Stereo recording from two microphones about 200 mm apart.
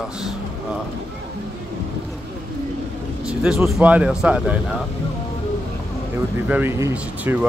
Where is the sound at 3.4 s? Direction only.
5° right (ahead or behind).